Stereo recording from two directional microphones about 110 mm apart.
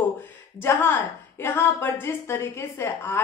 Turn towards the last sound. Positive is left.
turn(degrees=20)  # may be behind; listen again after turning